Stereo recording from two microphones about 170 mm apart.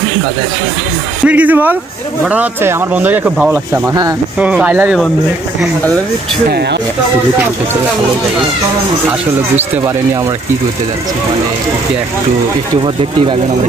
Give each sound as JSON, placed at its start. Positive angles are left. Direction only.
{"t": 1.2, "sound": "speech", "side_deg": -10}